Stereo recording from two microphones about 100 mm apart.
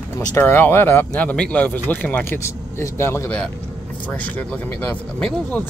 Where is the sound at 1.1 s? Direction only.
10° left (ahead or behind).